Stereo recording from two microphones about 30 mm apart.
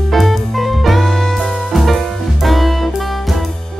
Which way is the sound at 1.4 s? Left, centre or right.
Centre.